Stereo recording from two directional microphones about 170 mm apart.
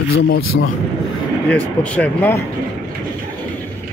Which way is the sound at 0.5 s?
90° left.